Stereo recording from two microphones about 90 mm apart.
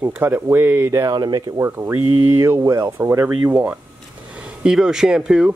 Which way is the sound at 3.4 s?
15° right (ahead or behind).